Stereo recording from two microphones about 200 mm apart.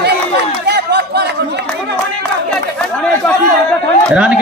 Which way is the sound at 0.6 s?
55° right (ahead or behind).